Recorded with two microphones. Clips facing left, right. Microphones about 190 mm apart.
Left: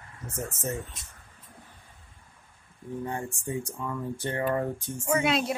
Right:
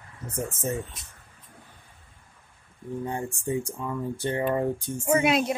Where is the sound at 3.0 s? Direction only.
20° right (ahead or behind).